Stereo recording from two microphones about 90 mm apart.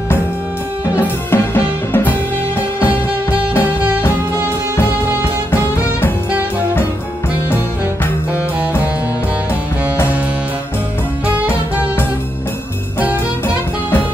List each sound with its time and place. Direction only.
0.9 s music: 30° left (ahead or behind)
3.3 s music: 25° left (ahead or behind)
5.5 s music: 25° left (ahead or behind)